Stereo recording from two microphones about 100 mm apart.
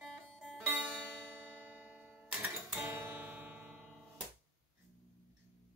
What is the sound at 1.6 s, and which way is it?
Music, 15° right (ahead or behind).